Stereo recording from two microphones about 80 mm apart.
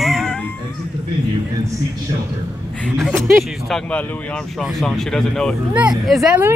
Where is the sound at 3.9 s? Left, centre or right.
Centre.